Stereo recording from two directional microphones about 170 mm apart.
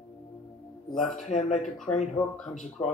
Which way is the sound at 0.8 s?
Centre (ahead or behind).